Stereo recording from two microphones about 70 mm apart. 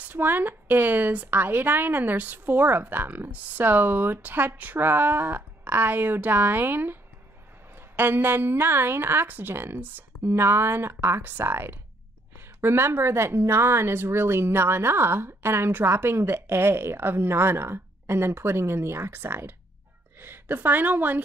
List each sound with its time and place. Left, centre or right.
0.0 s a woman's voice: right